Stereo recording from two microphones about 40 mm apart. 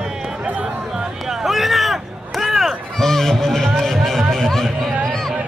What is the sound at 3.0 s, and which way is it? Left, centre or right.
Music, centre.